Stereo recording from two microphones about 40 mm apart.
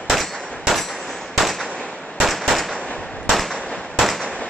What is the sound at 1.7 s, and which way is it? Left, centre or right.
Firecracker, centre.